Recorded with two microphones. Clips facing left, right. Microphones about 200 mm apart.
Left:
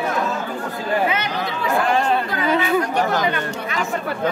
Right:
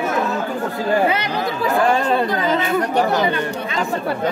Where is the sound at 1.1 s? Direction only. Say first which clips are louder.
Right 3 dB; 35° right (ahead or behind).